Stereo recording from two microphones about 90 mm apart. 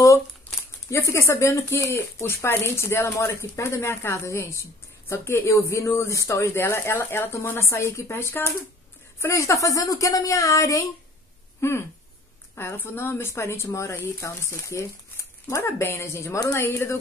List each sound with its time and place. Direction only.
0.8 s speech: 30° left (ahead or behind)